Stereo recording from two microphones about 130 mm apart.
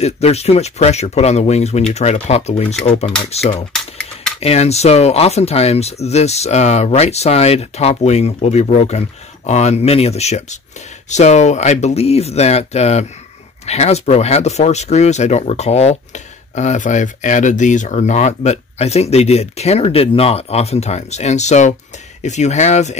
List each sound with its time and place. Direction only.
0.0 s speech: 55° left (ahead or behind)
3.7 s a sound: 5° left (ahead or behind)
4.4 s speech: 55° left (ahead or behind)